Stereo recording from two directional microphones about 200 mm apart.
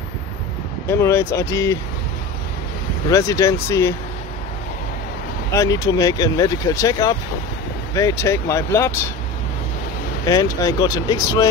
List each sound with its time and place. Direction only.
0.8 s speech: 15° left (ahead or behind)
3.1 s speech: 15° left (ahead or behind)
5.5 s speech: 15° left (ahead or behind)
10.2 s speech: 15° left (ahead or behind)